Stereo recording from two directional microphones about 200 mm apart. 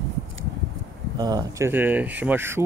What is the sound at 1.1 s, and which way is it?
Speech, 20° right (ahead or behind).